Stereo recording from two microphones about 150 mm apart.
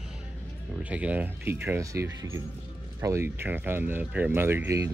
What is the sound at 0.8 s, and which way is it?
Speech, 10° right (ahead or behind).